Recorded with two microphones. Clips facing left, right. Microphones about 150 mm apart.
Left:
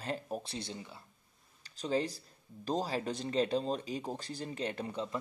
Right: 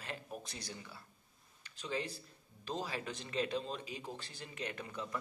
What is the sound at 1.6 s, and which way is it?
Speech, 35° left (ahead or behind).